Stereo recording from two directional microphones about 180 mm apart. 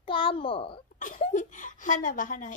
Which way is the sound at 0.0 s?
30° left (ahead or behind).